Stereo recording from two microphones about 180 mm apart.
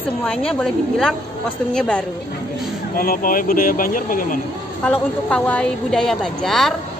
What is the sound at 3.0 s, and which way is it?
Speech, 50° left (ahead or behind).